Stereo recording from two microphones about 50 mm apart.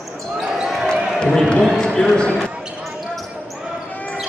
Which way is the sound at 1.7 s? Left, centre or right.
Centre.